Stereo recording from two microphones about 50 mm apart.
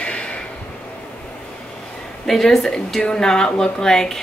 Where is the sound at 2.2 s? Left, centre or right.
Centre.